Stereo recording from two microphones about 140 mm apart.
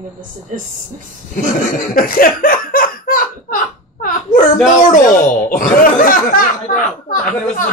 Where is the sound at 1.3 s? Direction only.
75° left (ahead or behind).